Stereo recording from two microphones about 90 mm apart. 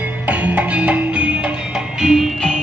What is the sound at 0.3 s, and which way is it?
Music, 15° right (ahead or behind).